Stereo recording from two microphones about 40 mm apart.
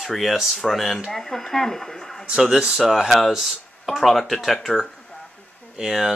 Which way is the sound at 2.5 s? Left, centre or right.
Centre.